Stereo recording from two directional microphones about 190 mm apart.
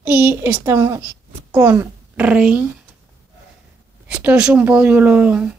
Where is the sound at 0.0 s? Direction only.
10° right (ahead or behind).